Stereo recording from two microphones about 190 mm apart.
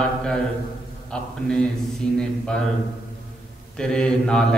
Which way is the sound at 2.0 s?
5° left (ahead or behind).